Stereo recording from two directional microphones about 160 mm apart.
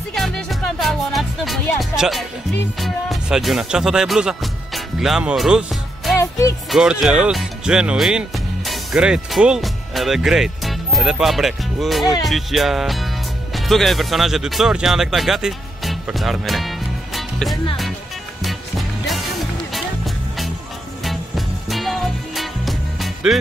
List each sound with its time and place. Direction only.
0.1 s music: centre (ahead or behind)
1.8 s speech: centre (ahead or behind)
18.4 s music: centre (ahead or behind)
21.0 s music: centre (ahead or behind)